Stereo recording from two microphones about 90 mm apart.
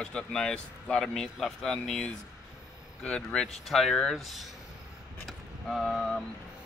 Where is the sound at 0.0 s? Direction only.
10° left (ahead or behind).